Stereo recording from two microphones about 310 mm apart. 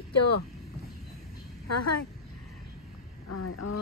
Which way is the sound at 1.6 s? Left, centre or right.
Left.